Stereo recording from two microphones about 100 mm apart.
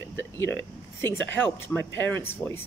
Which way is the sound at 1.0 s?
20° left (ahead or behind).